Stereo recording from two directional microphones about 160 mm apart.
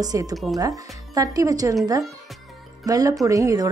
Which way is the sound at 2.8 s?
20° right (ahead or behind).